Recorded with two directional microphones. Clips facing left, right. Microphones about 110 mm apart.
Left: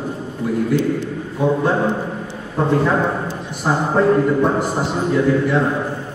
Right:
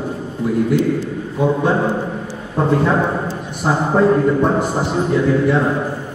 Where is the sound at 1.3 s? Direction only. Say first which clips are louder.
Right 1 dB; 5° right (ahead or behind).